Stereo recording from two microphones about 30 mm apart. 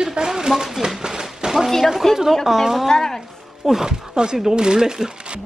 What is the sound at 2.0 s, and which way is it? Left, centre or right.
Speech, centre.